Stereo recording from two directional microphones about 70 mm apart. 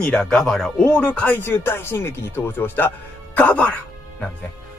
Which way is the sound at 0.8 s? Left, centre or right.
Centre.